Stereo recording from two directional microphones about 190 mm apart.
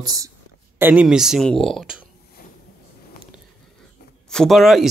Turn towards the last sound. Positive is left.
turn(degrees=0)  # may be behind; listen again after turning